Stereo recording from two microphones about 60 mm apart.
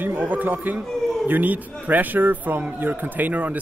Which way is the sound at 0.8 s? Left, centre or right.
Centre.